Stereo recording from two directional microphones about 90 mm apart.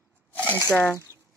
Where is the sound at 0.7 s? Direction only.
15° left (ahead or behind).